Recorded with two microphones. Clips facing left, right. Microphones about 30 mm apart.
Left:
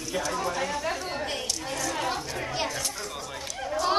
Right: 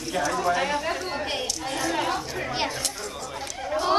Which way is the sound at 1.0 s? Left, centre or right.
Centre.